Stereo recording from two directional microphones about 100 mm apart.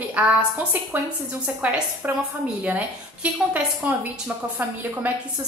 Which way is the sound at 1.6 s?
15° right (ahead or behind).